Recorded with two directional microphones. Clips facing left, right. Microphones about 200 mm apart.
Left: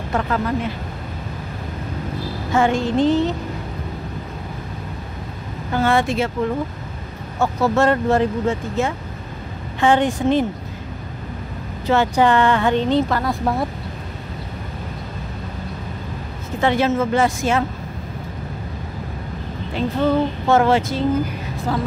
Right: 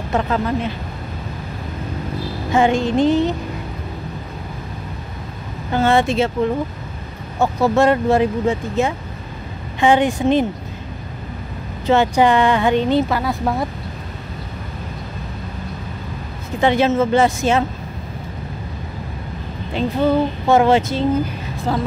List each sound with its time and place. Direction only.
0.1 s speech: 20° right (ahead or behind)
2.5 s a woman's voice: 20° right (ahead or behind)
5.7 s speech: 25° right (ahead or behind)
7.3 s a woman's voice: 15° right (ahead or behind)
11.8 s a woman's voice: 20° right (ahead or behind); by 13.7 s centre (ahead or behind)
16.6 s speech: 20° right (ahead or behind)
19.7 s a woman's voice: 15° right (ahead or behind)
21.7 s speech: 30° right (ahead or behind)